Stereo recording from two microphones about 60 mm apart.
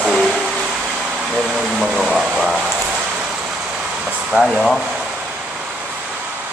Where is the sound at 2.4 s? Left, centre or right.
Centre.